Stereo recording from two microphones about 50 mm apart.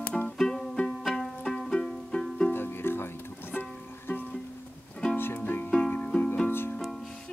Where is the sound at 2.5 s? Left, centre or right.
Left.